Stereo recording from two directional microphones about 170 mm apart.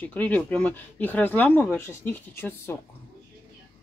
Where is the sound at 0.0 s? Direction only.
10° left (ahead or behind).